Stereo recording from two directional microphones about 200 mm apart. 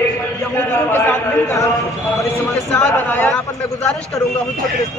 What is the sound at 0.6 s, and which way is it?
A man's voice, 10° left (ahead or behind).